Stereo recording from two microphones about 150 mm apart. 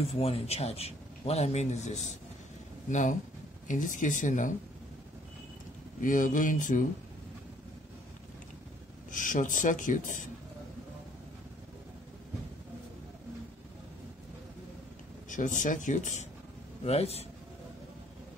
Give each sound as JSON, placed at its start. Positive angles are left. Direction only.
{"t": 0.1, "sound": "speech", "side_deg": 40}
{"t": 5.9, "sound": "speech", "side_deg": 60}
{"t": 9.1, "sound": "speech", "side_deg": 60}
{"t": 15.2, "sound": "speech", "side_deg": 60}